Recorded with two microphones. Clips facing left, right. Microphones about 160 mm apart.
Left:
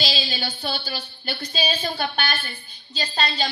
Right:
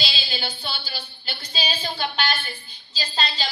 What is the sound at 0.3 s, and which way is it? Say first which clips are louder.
A woman's voice: left 3 dB; 50° left (ahead or behind).